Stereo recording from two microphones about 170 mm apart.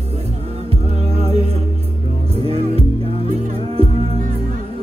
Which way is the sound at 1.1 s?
35° right (ahead or behind).